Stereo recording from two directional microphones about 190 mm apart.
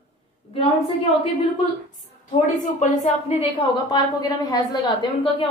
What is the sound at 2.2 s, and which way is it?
A woman's voice, 40° left (ahead or behind).